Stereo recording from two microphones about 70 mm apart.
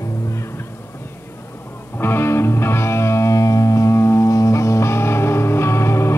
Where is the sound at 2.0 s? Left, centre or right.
Left.